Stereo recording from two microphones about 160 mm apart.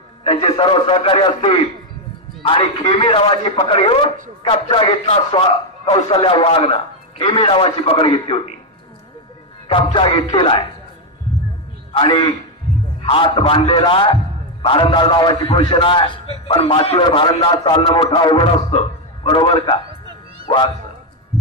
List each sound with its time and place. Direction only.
0.2 s speech: 40° left (ahead or behind)
9.9 s speech: 30° left (ahead or behind)
11.9 s a man's voice: 35° left (ahead or behind)